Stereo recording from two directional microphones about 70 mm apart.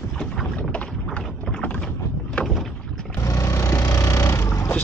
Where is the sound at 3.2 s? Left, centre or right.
Left.